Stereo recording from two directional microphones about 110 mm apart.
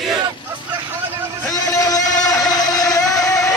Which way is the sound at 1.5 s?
35° left (ahead or behind).